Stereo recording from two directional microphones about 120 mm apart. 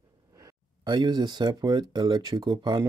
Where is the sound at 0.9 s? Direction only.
40° right (ahead or behind).